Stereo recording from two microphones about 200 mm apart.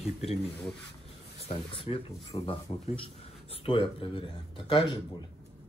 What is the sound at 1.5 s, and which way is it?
Speech, 25° left (ahead or behind).